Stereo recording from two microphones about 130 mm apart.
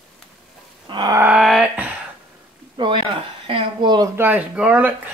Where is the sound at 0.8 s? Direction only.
35° right (ahead or behind).